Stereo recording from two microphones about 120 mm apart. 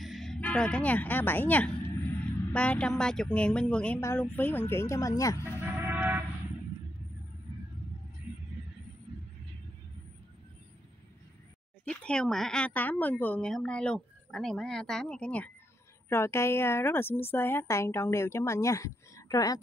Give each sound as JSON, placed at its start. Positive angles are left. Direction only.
{"t": 0.0, "sound": "music", "side_deg": 0}
{"t": 0.4, "sound": "speech", "side_deg": 10}
{"t": 5.4, "sound": "music", "side_deg": -15}
{"t": 11.8, "sound": "speech", "side_deg": 10}
{"t": 16.1, "sound": "speech", "side_deg": 20}